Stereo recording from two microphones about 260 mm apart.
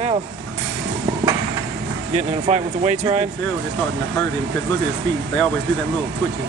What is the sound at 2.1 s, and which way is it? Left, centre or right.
Speech, right.